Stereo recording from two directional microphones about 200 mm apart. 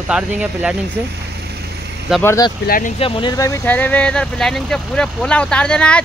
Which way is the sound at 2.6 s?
45° left (ahead or behind).